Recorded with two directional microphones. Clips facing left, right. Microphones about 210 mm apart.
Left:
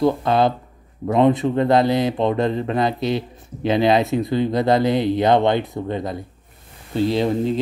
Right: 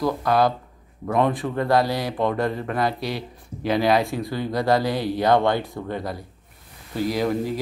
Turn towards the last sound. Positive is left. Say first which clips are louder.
# left 4 dB
turn(degrees=25)  # may be behind; listen again after turning